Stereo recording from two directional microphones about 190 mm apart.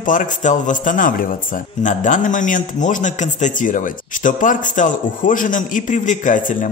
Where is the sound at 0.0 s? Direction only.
40° left (ahead or behind).